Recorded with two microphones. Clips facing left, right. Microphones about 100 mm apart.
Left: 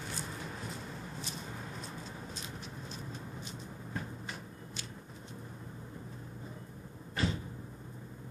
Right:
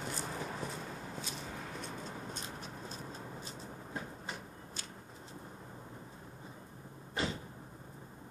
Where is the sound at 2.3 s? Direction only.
40° right (ahead or behind).